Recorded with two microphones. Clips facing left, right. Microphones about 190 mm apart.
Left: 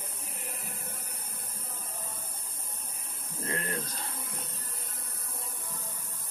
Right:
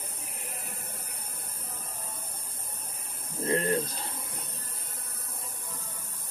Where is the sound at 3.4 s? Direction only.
30° right (ahead or behind).